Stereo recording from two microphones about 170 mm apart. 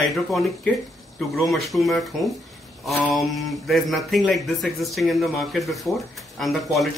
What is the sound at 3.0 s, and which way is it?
A man's voice, centre (ahead or behind).